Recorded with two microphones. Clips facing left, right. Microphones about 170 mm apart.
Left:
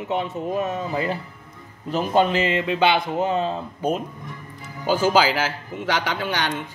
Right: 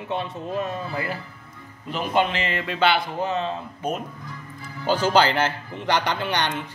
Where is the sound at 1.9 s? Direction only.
40° left (ahead or behind).